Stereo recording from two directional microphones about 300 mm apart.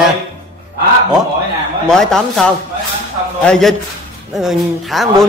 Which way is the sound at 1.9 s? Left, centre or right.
Centre.